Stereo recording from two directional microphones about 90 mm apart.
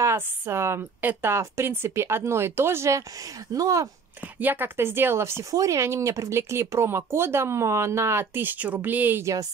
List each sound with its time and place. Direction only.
0.0 s speech: 25° right (ahead or behind)
4.4 s speech: 20° right (ahead or behind)
9.2 s speech: 35° right (ahead or behind)